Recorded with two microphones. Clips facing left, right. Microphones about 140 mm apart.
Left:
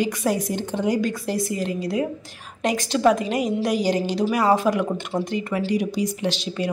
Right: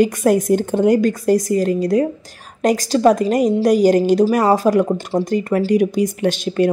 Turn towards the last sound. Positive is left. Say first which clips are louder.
# right 8 dB
turn(degrees=-50)  # may be behind; listen again after turning